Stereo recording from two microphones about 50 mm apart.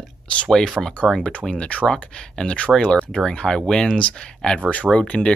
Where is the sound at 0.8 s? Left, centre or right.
Right.